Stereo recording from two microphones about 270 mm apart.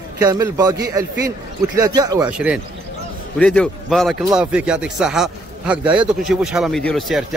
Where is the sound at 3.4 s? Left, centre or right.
Centre.